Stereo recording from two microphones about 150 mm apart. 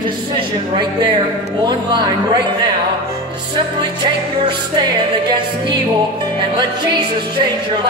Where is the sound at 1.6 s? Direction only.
30° right (ahead or behind).